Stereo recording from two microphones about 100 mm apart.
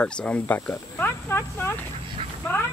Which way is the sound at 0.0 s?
10° left (ahead or behind).